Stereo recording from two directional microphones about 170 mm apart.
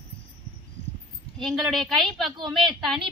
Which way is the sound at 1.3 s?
Centre (ahead or behind).